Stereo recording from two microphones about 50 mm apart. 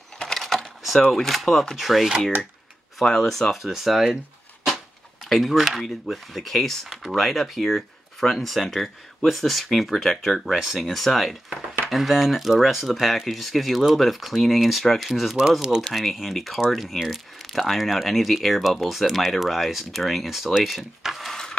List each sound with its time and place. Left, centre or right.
0.2 s a sound: centre
1.1 s speech: centre
5.3 s speech: centre
10.5 s speech: centre
15.6 s speech: centre
15.9 s speech: centre